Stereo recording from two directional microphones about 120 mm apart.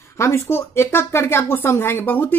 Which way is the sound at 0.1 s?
25° left (ahead or behind).